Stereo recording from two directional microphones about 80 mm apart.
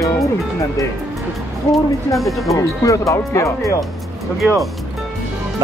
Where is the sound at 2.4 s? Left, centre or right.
Left.